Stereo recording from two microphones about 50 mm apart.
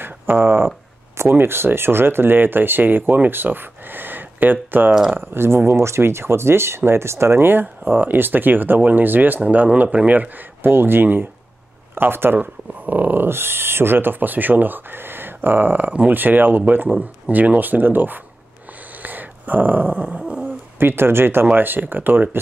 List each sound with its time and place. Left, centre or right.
0.0 s a sound: right
1.3 s speech: right
7.6 s speech: right
9.4 s speech: right
12.4 s speech: right
13.3 s speech: right
19.0 s a sound: right
20.4 s speech: right